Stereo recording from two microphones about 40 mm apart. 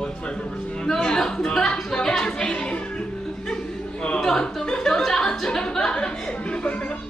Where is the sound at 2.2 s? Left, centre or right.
Left.